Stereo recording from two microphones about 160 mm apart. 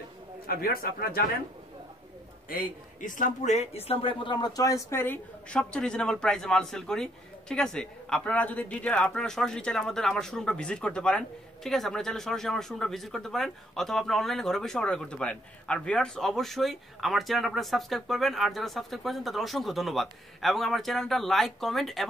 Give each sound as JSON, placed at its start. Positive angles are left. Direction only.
{"t": 0.5, "sound": "a man's voice", "side_deg": 70}
{"t": 2.5, "sound": "a man's voice", "side_deg": 55}